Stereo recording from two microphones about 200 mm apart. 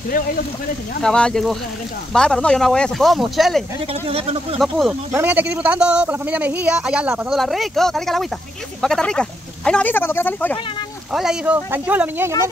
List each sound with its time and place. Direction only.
1.0 s a man's voice: 5° left (ahead or behind)
3.8 s speech: 30° right (ahead or behind)
4.6 s a man's voice: centre (ahead or behind)
11.1 s speech: 5° right (ahead or behind)